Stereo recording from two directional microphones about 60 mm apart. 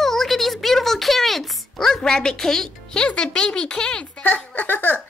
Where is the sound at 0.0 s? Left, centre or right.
Centre.